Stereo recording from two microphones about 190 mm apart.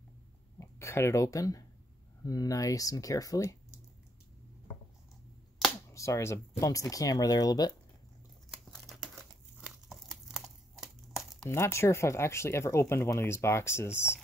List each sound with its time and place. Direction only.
0.6 s speech: 15° left (ahead or behind)
5.9 s speech: 15° left (ahead or behind)
8.5 s crumpling: centre (ahead or behind)
11.4 s speech: 15° left (ahead or behind)